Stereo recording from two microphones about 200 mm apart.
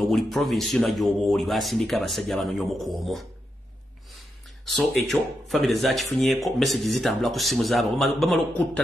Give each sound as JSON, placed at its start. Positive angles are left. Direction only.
{"t": 0.0, "sound": "speech", "side_deg": 0}
{"t": 4.6, "sound": "speech", "side_deg": 0}